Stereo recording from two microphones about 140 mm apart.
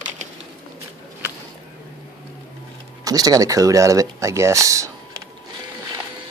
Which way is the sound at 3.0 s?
25° right (ahead or behind).